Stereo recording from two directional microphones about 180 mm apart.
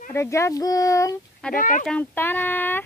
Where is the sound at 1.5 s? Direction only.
50° left (ahead or behind).